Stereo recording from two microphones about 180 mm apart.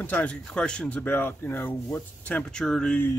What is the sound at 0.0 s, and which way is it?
Speech, 5° left (ahead or behind).